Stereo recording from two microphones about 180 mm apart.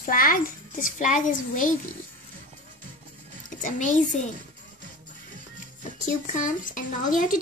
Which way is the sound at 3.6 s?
45° left (ahead or behind).